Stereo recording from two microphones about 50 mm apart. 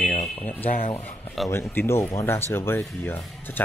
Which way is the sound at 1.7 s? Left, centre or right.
Left.